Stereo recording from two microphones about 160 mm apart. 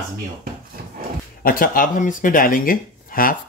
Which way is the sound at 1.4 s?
60° left (ahead or behind).